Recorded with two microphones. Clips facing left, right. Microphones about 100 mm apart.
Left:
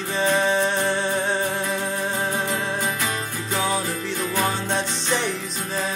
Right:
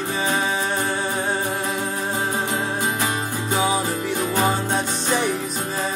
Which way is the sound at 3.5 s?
10° right (ahead or behind).